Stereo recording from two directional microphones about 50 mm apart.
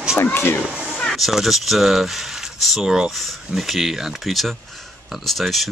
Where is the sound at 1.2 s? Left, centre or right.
Centre.